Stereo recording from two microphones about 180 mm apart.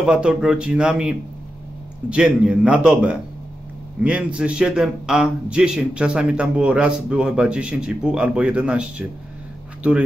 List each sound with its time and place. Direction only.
0.0 s a man's voice: 5° right (ahead or behind)